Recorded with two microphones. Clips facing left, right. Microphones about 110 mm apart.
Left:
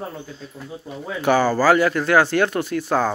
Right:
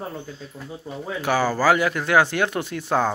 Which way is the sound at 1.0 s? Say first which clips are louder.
Left 4 dB; 5° right (ahead or behind).